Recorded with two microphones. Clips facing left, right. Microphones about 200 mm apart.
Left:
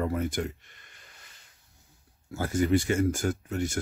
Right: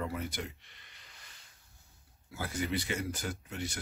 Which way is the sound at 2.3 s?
45° left (ahead or behind).